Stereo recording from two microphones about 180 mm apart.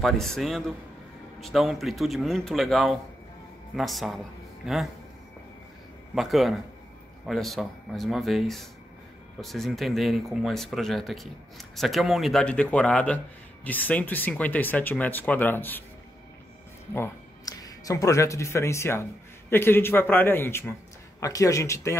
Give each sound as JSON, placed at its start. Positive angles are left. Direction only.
{"t": 0.0, "sound": "speech", "side_deg": 0}
{"t": 6.1, "sound": "speech", "side_deg": 0}
{"t": 16.9, "sound": "speech", "side_deg": 15}